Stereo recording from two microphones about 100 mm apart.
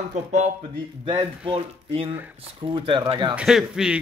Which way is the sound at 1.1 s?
60° right (ahead or behind).